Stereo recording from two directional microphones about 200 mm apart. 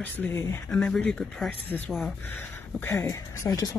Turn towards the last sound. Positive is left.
turn(degrees=20)  # may be behind; listen again after turning